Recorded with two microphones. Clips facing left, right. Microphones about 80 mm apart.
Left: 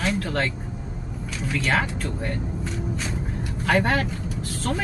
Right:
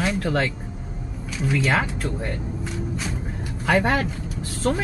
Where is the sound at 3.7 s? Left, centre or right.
Centre.